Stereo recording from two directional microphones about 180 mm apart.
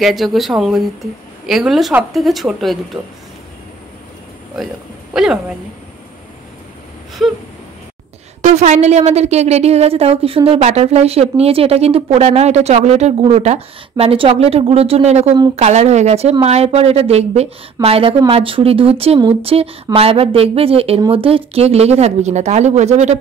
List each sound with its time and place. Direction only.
0.0 s speech: centre (ahead or behind)
5.1 s speech: 5° right (ahead or behind)
7.2 s speech: centre (ahead or behind)
8.4 s a woman's voice: 40° right (ahead or behind)